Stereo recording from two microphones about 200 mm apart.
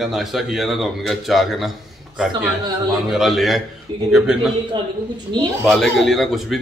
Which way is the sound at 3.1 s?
Centre (ahead or behind).